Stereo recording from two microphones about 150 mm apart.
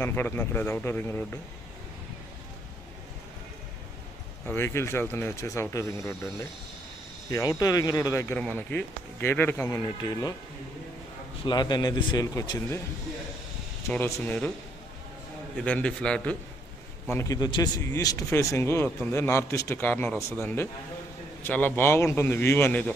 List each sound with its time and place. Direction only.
0.0 s speech: 15° left (ahead or behind)
4.5 s speech: 15° left (ahead or behind)
7.2 s speech: 20° left (ahead or behind)
8.4 s speech: 10° left (ahead or behind)
11.4 s speech: 30° left (ahead or behind)
13.9 s speech: 15° left (ahead or behind)
15.6 s speech: 10° left (ahead or behind)
17.1 s speech: 20° left (ahead or behind)